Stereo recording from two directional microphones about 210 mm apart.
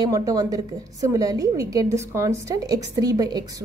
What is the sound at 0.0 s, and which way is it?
A woman's voice, 15° right (ahead or behind).